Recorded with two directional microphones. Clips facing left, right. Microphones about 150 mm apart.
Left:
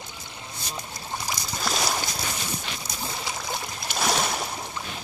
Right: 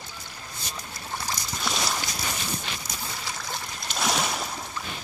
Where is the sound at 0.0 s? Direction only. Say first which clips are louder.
Left 1 dB; 20° left (ahead or behind).